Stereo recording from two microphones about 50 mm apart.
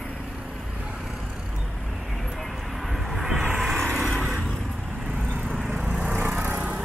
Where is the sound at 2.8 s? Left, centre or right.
Centre.